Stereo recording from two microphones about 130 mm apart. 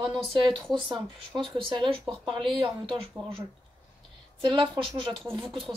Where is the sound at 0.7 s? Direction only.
40° right (ahead or behind).